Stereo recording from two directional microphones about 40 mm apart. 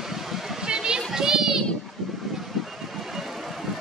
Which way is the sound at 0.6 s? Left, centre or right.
Centre.